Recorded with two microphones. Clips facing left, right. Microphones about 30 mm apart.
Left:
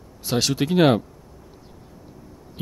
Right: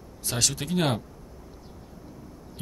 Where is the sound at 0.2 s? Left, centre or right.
Centre.